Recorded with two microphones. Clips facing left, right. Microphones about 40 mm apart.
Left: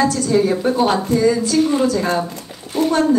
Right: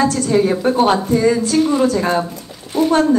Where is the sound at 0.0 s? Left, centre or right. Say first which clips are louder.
Right 1 dB; right.